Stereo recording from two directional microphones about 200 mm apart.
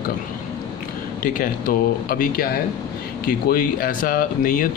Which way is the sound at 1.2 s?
45° left (ahead or behind).